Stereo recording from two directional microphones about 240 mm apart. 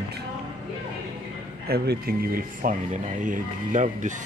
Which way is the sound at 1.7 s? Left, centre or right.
Right.